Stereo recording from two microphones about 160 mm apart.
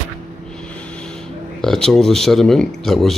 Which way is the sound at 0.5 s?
5° left (ahead or behind).